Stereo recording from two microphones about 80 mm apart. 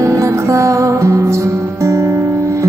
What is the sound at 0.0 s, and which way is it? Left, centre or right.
Music, right.